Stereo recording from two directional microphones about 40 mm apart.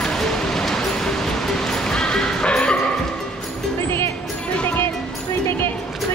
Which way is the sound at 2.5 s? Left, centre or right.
Left.